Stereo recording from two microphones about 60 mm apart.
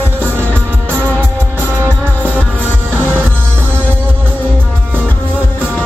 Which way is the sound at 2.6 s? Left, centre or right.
Left.